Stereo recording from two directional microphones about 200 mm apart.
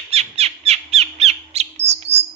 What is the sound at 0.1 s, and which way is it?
Bird, 30° right (ahead or behind).